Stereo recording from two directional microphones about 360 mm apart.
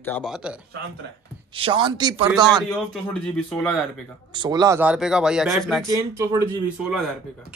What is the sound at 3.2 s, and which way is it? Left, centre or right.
Speech, centre.